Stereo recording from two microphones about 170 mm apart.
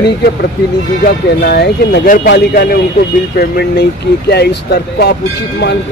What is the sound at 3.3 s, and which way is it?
Speech, 70° left (ahead or behind).